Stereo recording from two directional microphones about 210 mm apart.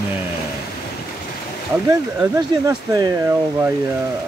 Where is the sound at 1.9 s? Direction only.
15° right (ahead or behind).